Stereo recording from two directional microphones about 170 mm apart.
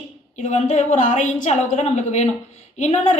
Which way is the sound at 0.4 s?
45° left (ahead or behind).